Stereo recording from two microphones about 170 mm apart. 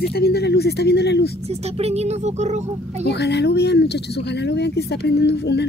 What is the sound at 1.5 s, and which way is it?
A woman's voice, 40° right (ahead or behind).